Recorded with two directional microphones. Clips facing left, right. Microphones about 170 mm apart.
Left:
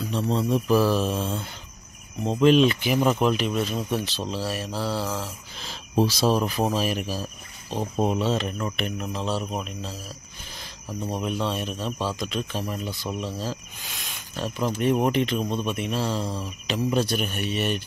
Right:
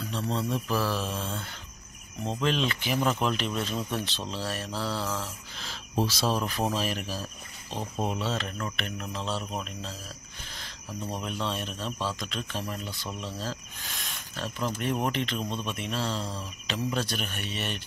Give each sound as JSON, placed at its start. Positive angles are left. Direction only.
{"t": 0.1, "sound": "speech", "side_deg": 15}
{"t": 7.9, "sound": "speech", "side_deg": 35}
{"t": 8.2, "sound": "speech", "side_deg": 15}
{"t": 11.2, "sound": "speech", "side_deg": 10}